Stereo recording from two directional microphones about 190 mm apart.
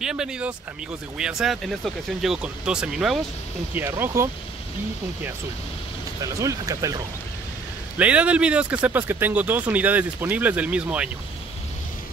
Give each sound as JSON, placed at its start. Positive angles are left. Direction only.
{"t": 0.0, "sound": "speech", "side_deg": -5}
{"t": 6.2, "sound": "speech", "side_deg": -15}
{"t": 8.0, "sound": "speech", "side_deg": -5}